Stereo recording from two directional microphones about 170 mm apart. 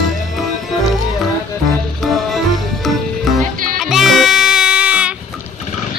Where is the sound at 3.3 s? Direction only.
Centre (ahead or behind).